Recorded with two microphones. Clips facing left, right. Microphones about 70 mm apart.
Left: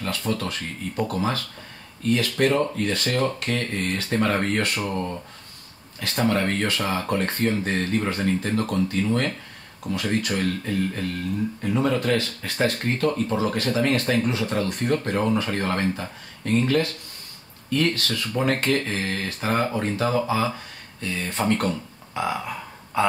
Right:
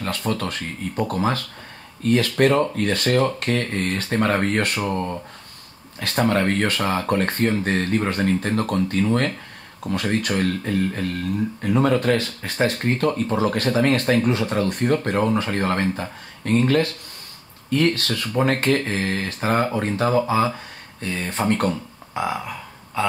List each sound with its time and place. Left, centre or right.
0.0 s speech: right
10.7 s speech: right
11.6 s speech: right
12.2 s speech: right
12.8 s speech: right
16.4 s speech: right
22.2 s speech: centre